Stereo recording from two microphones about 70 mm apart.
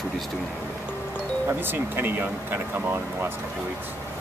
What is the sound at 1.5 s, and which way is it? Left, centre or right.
Speech, right.